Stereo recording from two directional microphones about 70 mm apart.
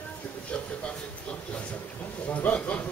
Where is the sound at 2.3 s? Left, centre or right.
Left.